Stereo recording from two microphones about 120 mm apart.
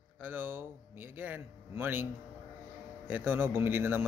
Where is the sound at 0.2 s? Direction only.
15° right (ahead or behind).